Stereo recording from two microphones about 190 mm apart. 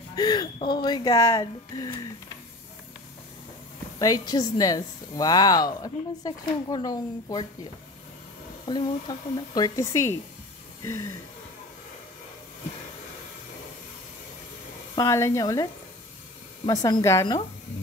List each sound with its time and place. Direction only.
0.1 s a woman's voice: 20° left (ahead or behind)
4.0 s a woman's voice: 20° left (ahead or behind)
8.6 s a woman's voice: 25° left (ahead or behind)
15.0 s speech: 15° left (ahead or behind)